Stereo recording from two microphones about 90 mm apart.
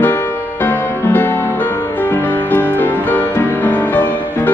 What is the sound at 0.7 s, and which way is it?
Music, 20° left (ahead or behind).